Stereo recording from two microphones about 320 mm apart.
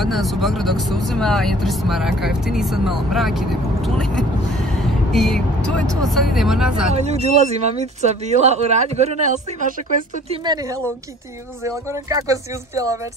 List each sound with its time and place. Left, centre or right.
0.0 s speech: centre
7.0 s speech: centre
11.6 s speech: centre